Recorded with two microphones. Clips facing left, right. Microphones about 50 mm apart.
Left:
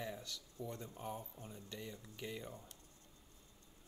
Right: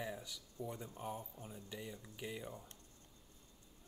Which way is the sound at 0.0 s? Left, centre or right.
Centre.